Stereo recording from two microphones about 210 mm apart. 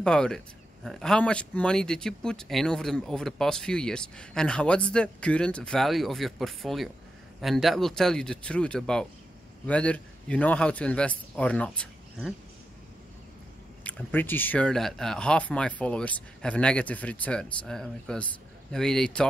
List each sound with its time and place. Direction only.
0.0 s speech: 5° left (ahead or behind)
13.8 s speech: 10° left (ahead or behind)